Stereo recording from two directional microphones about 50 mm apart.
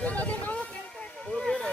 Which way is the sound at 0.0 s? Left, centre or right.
Left.